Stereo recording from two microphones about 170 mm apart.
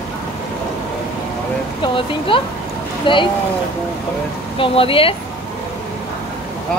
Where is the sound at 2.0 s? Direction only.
30° left (ahead or behind).